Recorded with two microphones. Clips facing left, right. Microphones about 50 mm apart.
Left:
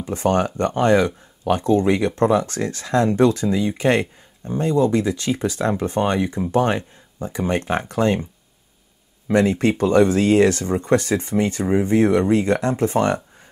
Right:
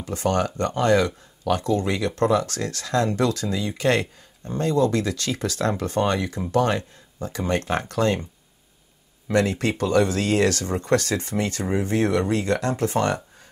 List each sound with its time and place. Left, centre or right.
0.0 s speech: left
9.3 s speech: left